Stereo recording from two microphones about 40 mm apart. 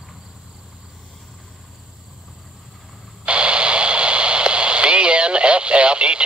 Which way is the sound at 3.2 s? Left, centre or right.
Right.